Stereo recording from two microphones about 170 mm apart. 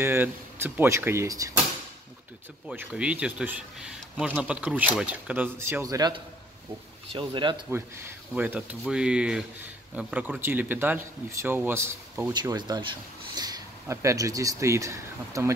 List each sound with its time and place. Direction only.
0.0 s speech: 15° right (ahead or behind)
2.7 s speech: 10° right (ahead or behind); by 7.5 s 30° right (ahead or behind)
7.7 s speech: 15° right (ahead or behind)
12.3 s speech: 25° right (ahead or behind)